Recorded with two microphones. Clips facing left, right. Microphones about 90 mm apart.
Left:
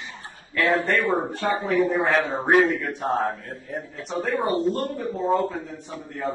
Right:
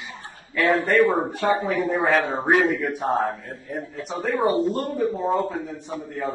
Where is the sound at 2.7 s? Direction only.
15° right (ahead or behind).